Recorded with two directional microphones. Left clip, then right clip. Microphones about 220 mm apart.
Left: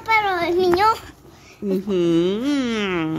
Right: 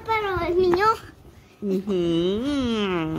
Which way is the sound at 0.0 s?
35° left (ahead or behind).